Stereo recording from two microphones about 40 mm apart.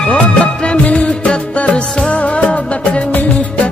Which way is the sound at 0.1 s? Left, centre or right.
Left.